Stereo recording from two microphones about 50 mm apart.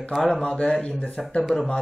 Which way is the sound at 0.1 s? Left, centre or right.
Centre.